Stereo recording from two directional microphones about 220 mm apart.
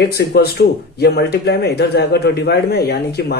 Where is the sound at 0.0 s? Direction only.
45° left (ahead or behind).